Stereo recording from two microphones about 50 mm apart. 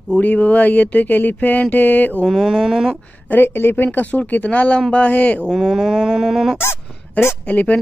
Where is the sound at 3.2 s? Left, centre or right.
Left.